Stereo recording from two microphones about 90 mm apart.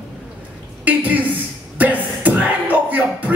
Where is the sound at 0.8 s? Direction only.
15° right (ahead or behind).